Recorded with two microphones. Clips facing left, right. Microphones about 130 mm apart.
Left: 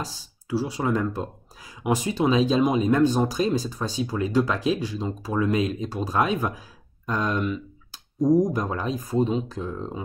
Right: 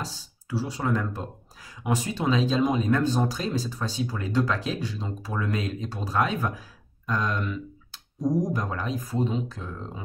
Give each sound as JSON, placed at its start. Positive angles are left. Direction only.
{"t": 0.0, "sound": "speech", "side_deg": 15}
{"t": 8.5, "sound": "speech", "side_deg": 20}